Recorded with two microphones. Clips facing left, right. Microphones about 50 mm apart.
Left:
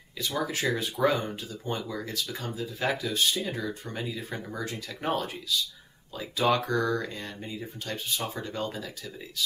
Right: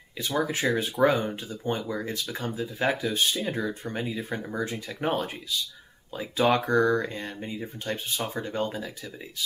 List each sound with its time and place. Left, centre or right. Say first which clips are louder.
0.2 s speech: right 3 dB; right
6.5 s speech: right 5 dB; right